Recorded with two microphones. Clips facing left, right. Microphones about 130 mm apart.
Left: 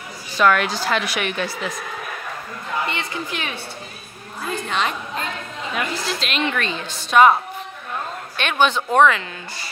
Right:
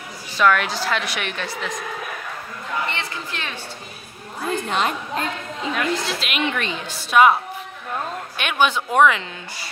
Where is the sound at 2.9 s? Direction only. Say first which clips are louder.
Left 2 dB; 15° left (ahead or behind).